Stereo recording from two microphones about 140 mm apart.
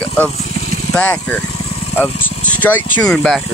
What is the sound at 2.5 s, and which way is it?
Vehicle, 10° left (ahead or behind).